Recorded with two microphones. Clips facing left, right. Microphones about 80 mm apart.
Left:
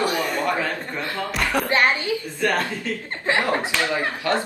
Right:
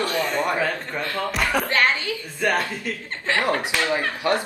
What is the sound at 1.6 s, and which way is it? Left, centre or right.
Speech, centre.